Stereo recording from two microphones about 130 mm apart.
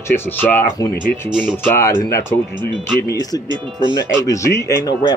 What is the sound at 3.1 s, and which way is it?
Speech, 30° left (ahead or behind).